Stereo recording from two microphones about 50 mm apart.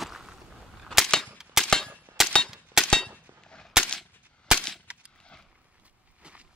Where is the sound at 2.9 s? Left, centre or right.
Centre.